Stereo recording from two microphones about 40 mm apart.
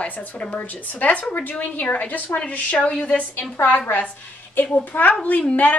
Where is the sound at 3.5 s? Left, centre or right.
Left.